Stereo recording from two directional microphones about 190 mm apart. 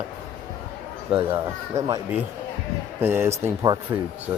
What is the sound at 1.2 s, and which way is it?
Speech, 15° right (ahead or behind).